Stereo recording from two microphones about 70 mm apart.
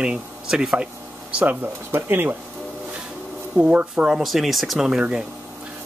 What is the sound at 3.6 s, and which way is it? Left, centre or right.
Speech, centre.